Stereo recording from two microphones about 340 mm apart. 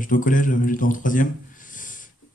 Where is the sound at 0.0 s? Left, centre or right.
Left.